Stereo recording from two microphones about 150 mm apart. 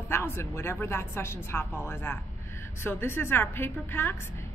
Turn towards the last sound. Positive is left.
turn(degrees=15)  # may be behind; listen again after turning